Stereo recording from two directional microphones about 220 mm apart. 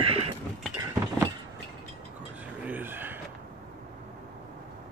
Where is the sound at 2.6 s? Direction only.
10° right (ahead or behind).